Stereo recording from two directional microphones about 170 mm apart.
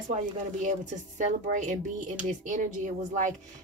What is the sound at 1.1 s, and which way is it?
Speech, 45° right (ahead or behind).